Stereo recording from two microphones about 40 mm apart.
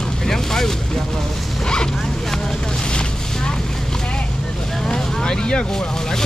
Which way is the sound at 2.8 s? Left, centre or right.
Left.